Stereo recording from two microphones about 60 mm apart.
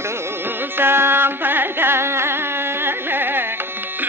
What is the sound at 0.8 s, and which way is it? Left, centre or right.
Music, right.